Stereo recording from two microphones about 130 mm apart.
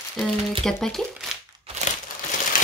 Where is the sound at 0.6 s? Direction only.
5° left (ahead or behind).